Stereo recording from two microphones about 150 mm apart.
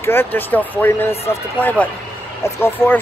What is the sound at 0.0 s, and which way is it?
Speech, 15° left (ahead or behind).